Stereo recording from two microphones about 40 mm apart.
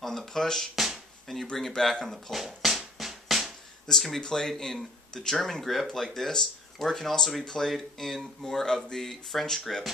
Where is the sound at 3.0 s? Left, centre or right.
Centre.